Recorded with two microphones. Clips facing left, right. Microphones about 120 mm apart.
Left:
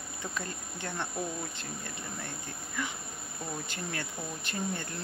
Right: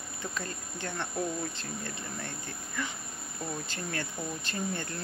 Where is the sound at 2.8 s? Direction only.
15° left (ahead or behind).